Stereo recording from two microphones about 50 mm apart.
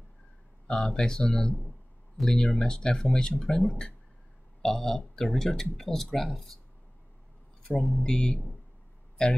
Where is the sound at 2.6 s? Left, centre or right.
Centre.